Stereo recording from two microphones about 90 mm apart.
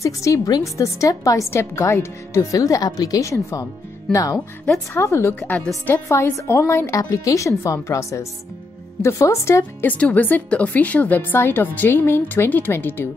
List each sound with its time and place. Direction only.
0.0 s a woman's voice: 35° left (ahead or behind)